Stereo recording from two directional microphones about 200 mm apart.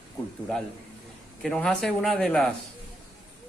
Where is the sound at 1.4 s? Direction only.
5° left (ahead or behind).